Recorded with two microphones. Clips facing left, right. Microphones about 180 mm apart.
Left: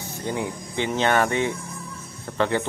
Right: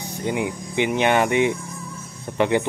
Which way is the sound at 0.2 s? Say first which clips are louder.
Right 3 dB; 15° right (ahead or behind).